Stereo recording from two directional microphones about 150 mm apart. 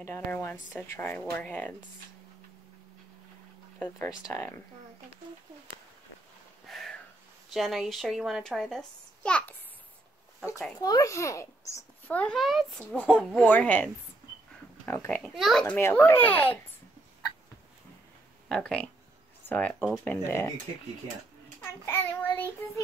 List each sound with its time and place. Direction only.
0.0 s a child's voice: 15° left (ahead or behind)
4.2 s a child's voice: 15° left (ahead or behind)
6.7 s a sound: centre (ahead or behind)
7.5 s a woman's voice: centre (ahead or behind)
10.8 s a child's voice: 25° left (ahead or behind)
12.2 s a child's voice: 5° left (ahead or behind)
14.9 s a child's voice: 15° left (ahead or behind)
15.3 s a woman's voice: centre (ahead or behind)
15.6 s a child's voice: 10° left (ahead or behind)
18.5 s a woman's voice: 5° left (ahead or behind)
21.5 s a child's voice: 15° left (ahead or behind)